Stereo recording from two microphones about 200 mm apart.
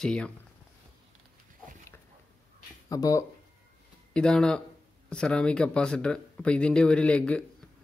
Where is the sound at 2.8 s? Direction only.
15° left (ahead or behind).